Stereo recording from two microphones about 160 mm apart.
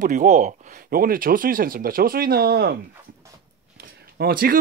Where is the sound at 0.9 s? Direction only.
65° right (ahead or behind).